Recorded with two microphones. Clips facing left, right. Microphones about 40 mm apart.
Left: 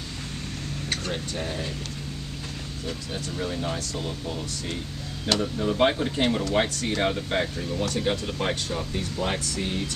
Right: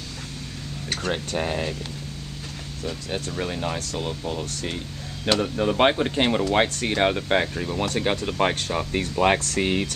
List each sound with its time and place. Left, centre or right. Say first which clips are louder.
1.0 s speech: right 5 dB; right
3.1 s speech: right 3 dB; right
5.4 s speech: right 2 dB; right